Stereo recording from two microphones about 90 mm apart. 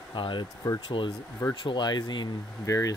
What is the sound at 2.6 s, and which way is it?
Speech, 35° left (ahead or behind).